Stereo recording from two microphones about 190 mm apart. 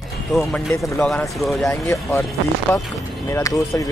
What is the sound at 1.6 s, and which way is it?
Speech, 15° left (ahead or behind).